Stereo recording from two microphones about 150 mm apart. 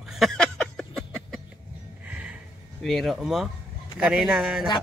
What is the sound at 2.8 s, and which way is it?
Speech, centre (ahead or behind).